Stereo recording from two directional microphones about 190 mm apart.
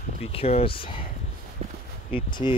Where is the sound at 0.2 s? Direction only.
30° left (ahead or behind).